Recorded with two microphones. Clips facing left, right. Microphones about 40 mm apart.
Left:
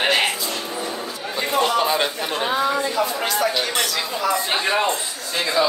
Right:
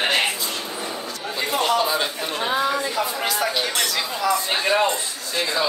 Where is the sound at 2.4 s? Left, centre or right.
Centre.